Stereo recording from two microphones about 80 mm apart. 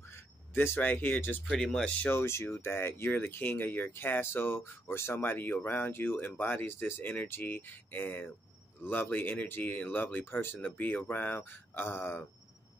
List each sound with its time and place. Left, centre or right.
0.1 s speech: left
1.5 s speech: centre
2.0 s speech: left